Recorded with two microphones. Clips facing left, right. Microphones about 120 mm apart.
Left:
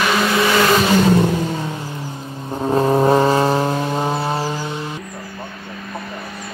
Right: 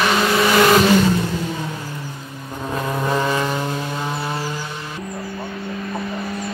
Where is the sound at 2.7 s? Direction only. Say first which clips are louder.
Left 8 dB; 35° left (ahead or behind).